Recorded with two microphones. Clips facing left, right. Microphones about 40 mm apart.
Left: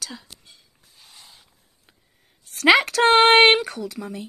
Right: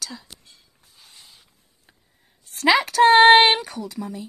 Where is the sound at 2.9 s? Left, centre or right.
Left.